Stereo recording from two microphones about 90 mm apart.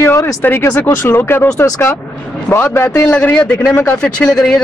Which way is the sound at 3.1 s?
10° left (ahead or behind).